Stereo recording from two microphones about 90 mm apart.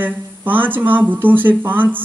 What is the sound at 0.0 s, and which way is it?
A man's voice, 20° right (ahead or behind).